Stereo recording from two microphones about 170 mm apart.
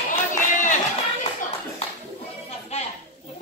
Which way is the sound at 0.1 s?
45° left (ahead or behind).